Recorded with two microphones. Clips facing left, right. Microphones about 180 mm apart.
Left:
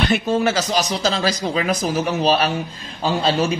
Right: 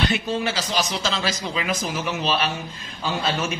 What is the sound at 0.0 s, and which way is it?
Speech, 50° left (ahead or behind).